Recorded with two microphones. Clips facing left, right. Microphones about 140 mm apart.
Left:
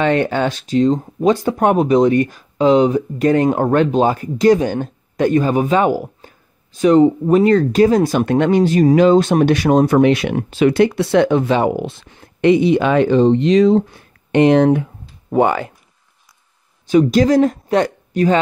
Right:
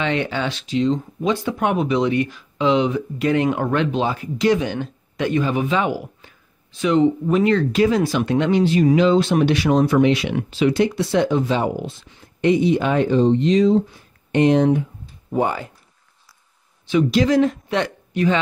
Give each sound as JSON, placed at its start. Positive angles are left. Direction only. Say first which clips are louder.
{"t": 0.0, "sound": "speech", "louder": "left 6 dB", "side_deg": 50}
{"t": 16.8, "sound": "speech", "louder": "left 5 dB", "side_deg": 45}